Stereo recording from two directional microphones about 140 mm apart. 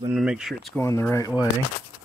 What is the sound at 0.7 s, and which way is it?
Speech, 20° left (ahead or behind).